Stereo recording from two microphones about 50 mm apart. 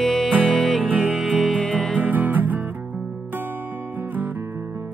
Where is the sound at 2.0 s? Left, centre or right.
Right.